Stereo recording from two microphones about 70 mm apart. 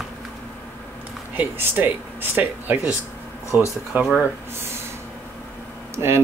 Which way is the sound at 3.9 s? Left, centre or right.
Right.